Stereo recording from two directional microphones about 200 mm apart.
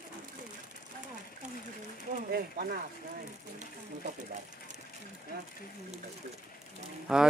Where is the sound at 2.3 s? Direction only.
45° right (ahead or behind).